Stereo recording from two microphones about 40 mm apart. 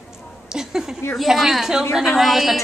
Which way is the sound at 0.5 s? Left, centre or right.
Centre.